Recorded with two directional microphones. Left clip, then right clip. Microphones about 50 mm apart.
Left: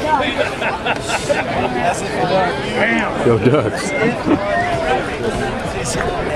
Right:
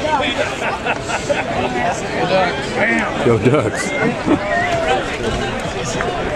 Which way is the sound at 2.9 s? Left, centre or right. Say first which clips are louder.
Even; right.